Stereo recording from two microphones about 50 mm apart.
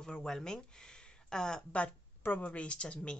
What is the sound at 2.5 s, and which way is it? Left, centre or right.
Speech, left.